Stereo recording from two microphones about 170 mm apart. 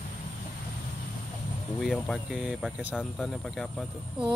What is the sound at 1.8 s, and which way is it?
Speech, centre (ahead or behind).